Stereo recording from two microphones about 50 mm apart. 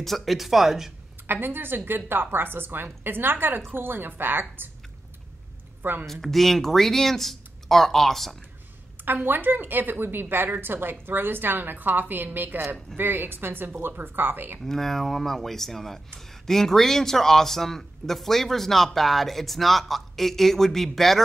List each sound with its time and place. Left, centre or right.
0.0 s speech: centre
1.2 s a woman's voice: right
5.8 s a sound: right
6.0 s speech: centre
9.0 s a woman's voice: right
14.6 s a man's voice: centre